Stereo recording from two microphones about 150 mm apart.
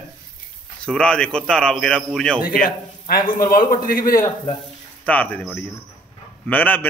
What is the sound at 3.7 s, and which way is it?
Speech, 70° left (ahead or behind).